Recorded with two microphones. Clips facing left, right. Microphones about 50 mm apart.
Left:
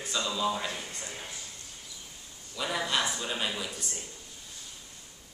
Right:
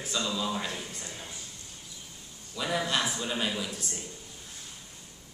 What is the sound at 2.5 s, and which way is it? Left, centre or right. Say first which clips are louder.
Speech: right 1 dB; centre.